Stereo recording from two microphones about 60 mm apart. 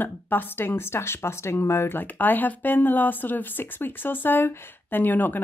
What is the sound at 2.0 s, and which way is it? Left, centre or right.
Speech, left.